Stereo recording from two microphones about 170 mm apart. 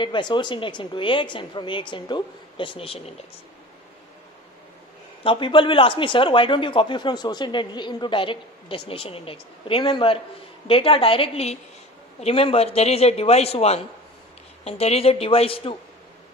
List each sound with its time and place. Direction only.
0.0 s speech: 25° left (ahead or behind)
5.2 s a man's voice: 30° left (ahead or behind)